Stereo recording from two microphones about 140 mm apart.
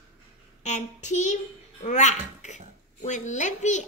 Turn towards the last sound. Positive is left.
turn(degrees=60)  # may be behind; listen again after turning